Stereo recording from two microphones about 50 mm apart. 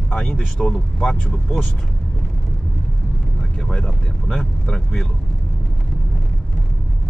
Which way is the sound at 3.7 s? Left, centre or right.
Centre.